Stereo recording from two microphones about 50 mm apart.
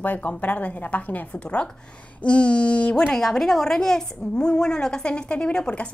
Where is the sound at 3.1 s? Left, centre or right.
Centre.